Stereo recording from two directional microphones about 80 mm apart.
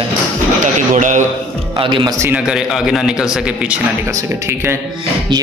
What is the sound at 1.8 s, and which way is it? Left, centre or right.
Speech, right.